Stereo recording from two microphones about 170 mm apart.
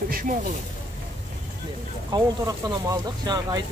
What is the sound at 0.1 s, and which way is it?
Snake, 55° right (ahead or behind).